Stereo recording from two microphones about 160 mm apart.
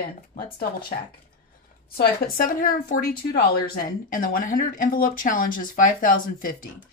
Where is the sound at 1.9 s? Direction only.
65° left (ahead or behind).